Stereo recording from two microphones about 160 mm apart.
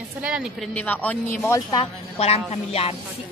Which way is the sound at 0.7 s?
10° left (ahead or behind).